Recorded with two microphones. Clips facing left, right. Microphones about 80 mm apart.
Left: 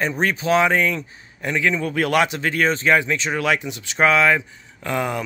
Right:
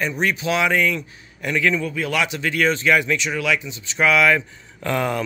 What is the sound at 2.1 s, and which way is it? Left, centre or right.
Speech, left.